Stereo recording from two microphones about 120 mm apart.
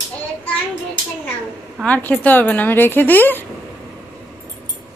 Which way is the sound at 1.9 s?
15° left (ahead or behind).